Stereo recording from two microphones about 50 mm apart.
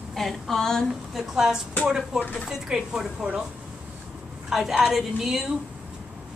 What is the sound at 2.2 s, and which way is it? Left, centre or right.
Speech, left.